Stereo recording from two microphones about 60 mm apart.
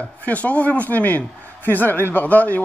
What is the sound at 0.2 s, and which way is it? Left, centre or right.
A man's voice, left.